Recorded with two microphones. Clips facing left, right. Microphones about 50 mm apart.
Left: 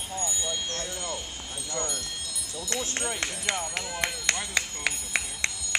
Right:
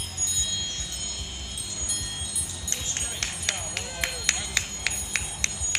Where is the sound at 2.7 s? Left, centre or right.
Left.